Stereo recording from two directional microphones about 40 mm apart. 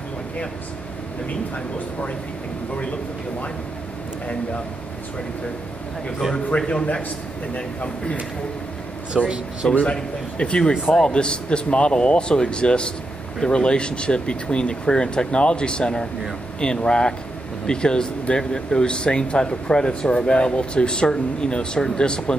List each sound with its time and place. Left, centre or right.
6.6 s speech: left
9.1 s speech: right
10.3 s speech: left